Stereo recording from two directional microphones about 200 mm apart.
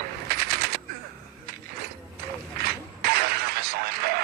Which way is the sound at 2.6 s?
50° right (ahead or behind).